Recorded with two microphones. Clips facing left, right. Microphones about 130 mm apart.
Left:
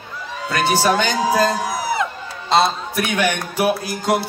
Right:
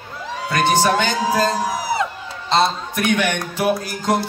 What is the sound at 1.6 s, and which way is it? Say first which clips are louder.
Music: even; 35° right (ahead or behind).